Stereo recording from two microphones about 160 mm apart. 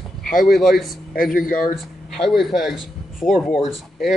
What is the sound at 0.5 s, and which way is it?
Speech, centre (ahead or behind).